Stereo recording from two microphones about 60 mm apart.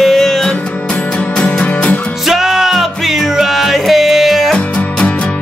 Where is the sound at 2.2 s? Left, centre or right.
Centre.